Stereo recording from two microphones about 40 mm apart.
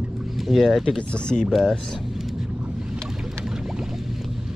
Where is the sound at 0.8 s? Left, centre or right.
Left.